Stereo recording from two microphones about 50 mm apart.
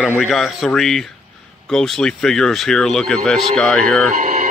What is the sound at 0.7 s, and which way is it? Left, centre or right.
Speech, centre.